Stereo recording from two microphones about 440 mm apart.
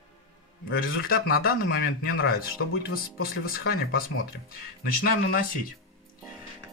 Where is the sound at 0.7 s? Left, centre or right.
Left.